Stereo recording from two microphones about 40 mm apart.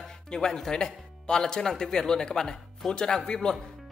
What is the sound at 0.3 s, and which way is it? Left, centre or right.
Speech, centre.